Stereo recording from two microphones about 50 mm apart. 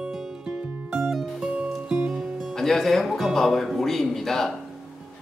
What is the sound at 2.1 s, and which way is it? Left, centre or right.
Music, centre.